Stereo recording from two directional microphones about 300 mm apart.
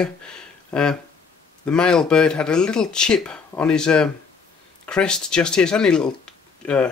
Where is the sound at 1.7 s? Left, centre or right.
Centre.